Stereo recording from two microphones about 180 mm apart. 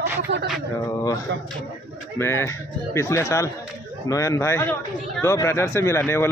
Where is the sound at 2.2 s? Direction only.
15° left (ahead or behind).